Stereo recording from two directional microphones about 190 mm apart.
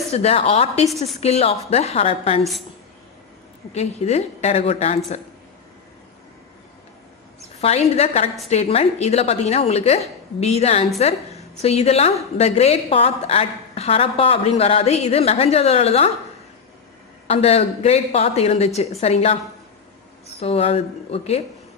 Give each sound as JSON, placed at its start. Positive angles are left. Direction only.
{"t": 0.1, "sound": "a woman's voice", "side_deg": 30}
{"t": 3.7, "sound": "a woman's voice", "side_deg": 35}
{"t": 7.6, "sound": "a woman's voice", "side_deg": 35}
{"t": 17.3, "sound": "a woman's voice", "side_deg": 30}
{"t": 20.3, "sound": "a woman's voice", "side_deg": 30}